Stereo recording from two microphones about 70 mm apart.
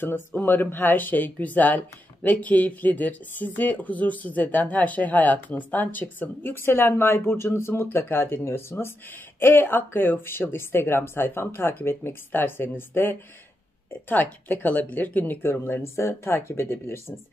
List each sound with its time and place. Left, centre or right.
0.4 s speech: left